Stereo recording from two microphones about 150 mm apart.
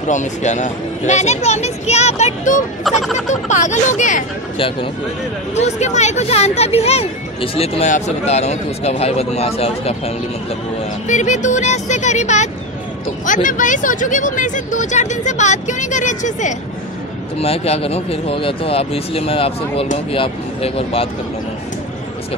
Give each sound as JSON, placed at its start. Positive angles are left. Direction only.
{"t": 0.1, "sound": "speech", "side_deg": 55}
{"t": 2.8, "sound": "speech", "side_deg": 0}
{"t": 3.3, "sound": "speech", "side_deg": 55}
{"t": 5.5, "sound": "speech", "side_deg": 50}
{"t": 11.1, "sound": "speech", "side_deg": 55}
{"t": 17.4, "sound": "speech", "side_deg": 40}